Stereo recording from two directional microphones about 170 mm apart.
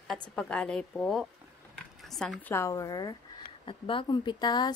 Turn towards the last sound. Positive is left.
turn(degrees=25)  # may be behind; listen again after turning